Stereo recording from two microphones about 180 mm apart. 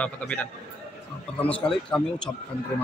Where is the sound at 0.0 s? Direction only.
5° left (ahead or behind).